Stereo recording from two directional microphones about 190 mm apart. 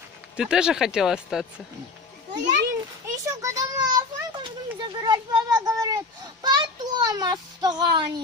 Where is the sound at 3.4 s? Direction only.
20° right (ahead or behind).